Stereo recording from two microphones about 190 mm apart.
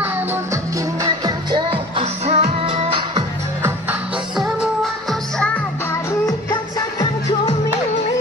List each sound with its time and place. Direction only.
1.0 s music: 20° right (ahead or behind)
6.8 s music: 20° left (ahead or behind)